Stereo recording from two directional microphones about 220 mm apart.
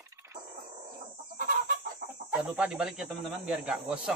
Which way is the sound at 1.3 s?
40° right (ahead or behind).